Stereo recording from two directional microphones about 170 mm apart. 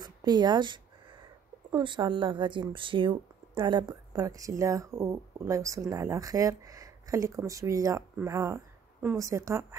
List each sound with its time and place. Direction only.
0.0 s a woman's voice: 25° right (ahead or behind)